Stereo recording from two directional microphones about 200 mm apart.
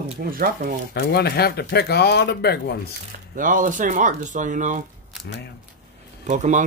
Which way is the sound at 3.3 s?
40° right (ahead or behind).